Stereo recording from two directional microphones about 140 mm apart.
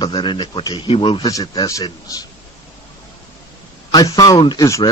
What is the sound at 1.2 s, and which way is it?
Speech, 25° left (ahead or behind).